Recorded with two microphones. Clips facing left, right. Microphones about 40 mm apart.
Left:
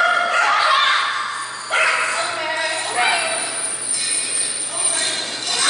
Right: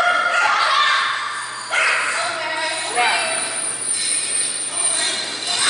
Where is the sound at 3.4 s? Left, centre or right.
Centre.